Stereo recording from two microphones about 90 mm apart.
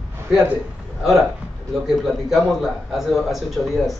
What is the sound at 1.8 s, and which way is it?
A man's voice, 5° right (ahead or behind).